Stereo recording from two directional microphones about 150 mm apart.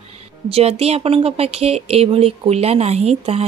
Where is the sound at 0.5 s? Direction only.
40° right (ahead or behind).